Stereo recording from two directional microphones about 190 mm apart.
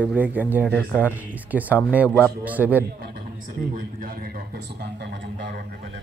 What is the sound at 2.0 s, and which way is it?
Speech, 10° left (ahead or behind).